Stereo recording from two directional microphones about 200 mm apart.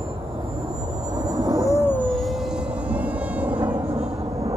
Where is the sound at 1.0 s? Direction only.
20° right (ahead or behind).